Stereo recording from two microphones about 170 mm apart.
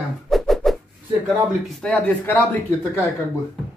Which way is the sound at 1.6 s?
5° left (ahead or behind).